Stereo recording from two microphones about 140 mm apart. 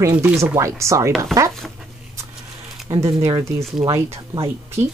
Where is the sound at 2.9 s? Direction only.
50° right (ahead or behind).